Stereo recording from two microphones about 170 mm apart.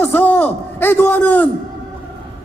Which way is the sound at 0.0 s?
10° left (ahead or behind).